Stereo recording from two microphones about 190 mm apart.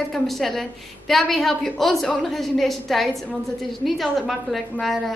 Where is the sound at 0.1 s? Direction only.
Centre (ahead or behind).